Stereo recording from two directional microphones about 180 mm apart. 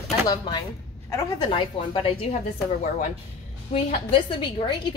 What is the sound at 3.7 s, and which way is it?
A woman's voice, 30° left (ahead or behind).